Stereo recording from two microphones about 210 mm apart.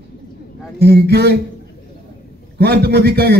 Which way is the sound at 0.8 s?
50° right (ahead or behind).